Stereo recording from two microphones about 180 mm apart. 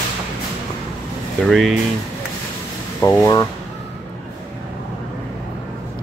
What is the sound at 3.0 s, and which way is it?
Speech, 15° left (ahead or behind).